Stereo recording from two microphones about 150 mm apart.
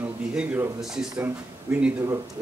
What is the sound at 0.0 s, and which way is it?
A man's voice, 10° right (ahead or behind).